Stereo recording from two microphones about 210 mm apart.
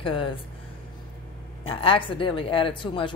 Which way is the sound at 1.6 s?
25° left (ahead or behind).